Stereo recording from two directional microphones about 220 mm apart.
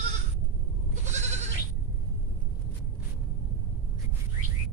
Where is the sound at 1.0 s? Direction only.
30° right (ahead or behind).